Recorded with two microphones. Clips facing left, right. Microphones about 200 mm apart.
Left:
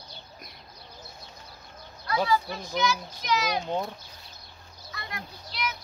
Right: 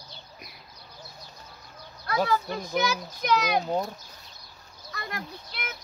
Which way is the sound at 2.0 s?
50° right (ahead or behind).